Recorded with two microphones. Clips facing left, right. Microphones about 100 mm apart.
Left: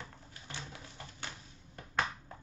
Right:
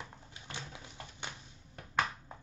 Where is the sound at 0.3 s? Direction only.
20° right (ahead or behind).